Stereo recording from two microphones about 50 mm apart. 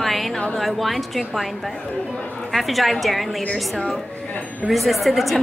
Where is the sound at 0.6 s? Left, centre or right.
Centre.